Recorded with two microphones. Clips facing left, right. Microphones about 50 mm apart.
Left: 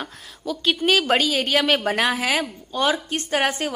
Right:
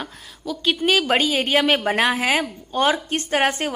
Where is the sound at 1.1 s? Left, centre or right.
Centre.